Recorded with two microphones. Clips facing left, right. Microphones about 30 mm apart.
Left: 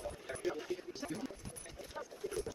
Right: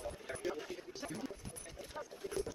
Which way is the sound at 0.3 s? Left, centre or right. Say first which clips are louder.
Left 3 dB; centre.